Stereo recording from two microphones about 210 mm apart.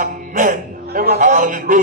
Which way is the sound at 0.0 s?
40° right (ahead or behind).